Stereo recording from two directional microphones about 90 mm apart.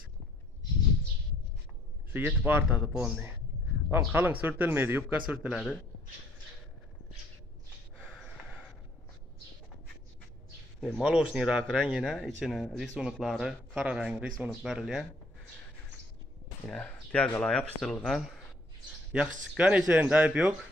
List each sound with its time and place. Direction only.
2.1 s speech: 20° right (ahead or behind)
11.0 s speech: 10° right (ahead or behind)
11.6 s speech: 5° left (ahead or behind)
16.6 s speech: 10° left (ahead or behind)
19.1 s speech: 15° right (ahead or behind)